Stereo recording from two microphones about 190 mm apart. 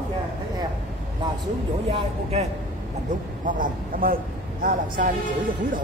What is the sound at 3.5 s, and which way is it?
Speech, 45° right (ahead or behind).